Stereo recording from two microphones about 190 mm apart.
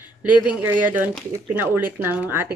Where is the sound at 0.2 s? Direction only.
5° right (ahead or behind).